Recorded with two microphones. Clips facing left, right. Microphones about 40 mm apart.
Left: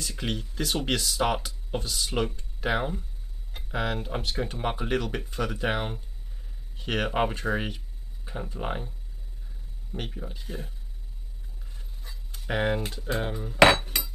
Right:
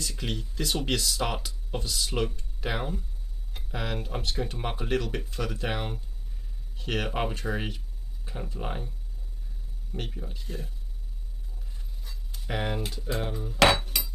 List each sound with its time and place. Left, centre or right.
0.1 s speech: centre
9.9 s speech: centre
11.7 s a sound: centre
12.8 s cutlery: centre